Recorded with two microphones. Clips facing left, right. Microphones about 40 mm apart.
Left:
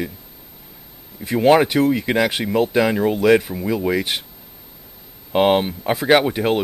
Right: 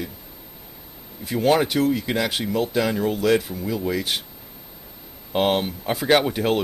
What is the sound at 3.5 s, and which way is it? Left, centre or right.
Speech, left.